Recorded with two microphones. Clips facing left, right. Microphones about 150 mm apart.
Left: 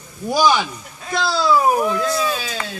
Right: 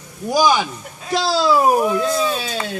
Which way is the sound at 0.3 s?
15° right (ahead or behind).